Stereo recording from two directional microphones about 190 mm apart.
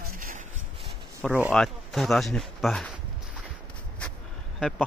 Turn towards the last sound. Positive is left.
turn(degrees=0)  # may be behind; listen again after turning